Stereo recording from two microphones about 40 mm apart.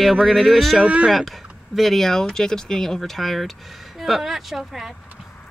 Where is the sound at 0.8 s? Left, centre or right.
Right.